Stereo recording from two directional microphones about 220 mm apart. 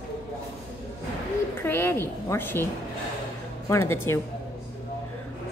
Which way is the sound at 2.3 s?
10° left (ahead or behind).